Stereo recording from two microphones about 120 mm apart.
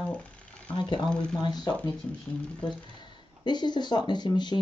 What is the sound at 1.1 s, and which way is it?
Speech, 5° left (ahead or behind).